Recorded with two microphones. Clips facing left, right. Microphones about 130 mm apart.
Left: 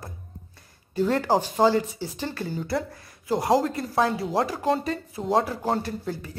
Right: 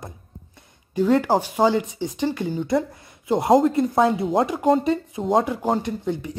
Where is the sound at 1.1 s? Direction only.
10° right (ahead or behind).